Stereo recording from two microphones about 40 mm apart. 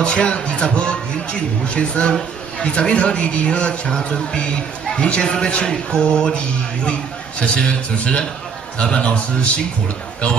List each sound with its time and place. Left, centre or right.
0.0 s a man's voice: left